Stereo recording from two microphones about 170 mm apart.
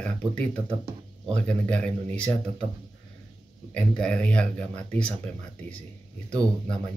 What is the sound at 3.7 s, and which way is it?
Speech, 5° left (ahead or behind).